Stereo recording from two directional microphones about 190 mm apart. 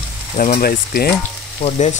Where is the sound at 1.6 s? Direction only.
35° left (ahead or behind).